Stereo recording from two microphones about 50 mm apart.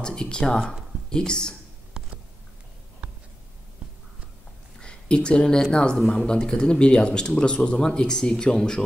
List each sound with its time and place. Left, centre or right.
0.0 s speech: centre
4.7 s speech: centre